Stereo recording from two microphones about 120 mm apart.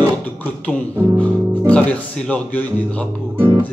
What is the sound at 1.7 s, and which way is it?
Speech, 10° left (ahead or behind).